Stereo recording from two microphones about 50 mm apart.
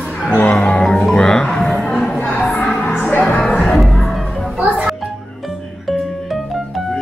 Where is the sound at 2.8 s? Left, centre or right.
Left.